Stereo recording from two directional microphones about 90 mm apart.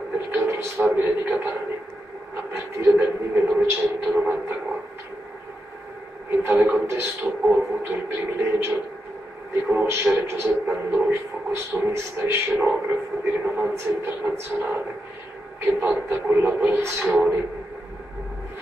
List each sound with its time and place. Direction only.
0.3 s speech: 25° right (ahead or behind)
6.3 s speech: 25° right (ahead or behind)